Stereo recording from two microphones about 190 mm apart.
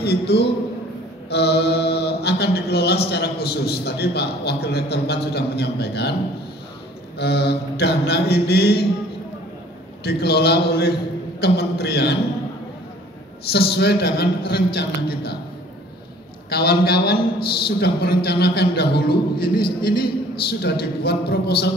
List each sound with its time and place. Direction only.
0.0 s a man's voice: 60° left (ahead or behind)
7.2 s mantra: 60° left (ahead or behind)
10.0 s mantra: 60° left (ahead or behind)
13.5 s mantra: 60° left (ahead or behind)
16.4 s mantra: 55° left (ahead or behind)
19.4 s a man's voice: 50° left (ahead or behind)
21.0 s mantra: 55° left (ahead or behind)